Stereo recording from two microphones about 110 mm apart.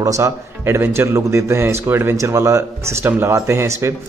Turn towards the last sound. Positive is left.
turn(degrees=-25)  # may be behind; listen again after turning